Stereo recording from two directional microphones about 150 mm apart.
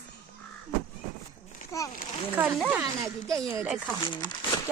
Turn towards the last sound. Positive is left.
turn(degrees=30)  # may be behind; listen again after turning